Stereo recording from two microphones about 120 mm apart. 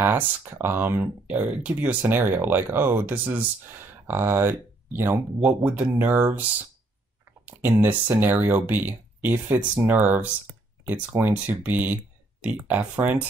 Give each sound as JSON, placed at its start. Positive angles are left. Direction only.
{"t": 0.1, "sound": "speech", "side_deg": -20}
{"t": 7.4, "sound": "speech", "side_deg": -15}